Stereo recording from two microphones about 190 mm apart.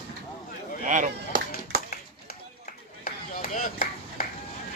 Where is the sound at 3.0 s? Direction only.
45° left (ahead or behind).